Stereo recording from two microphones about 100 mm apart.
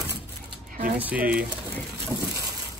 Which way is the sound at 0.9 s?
15° right (ahead or behind).